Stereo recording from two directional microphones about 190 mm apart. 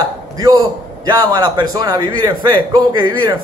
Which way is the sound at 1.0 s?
20° right (ahead or behind).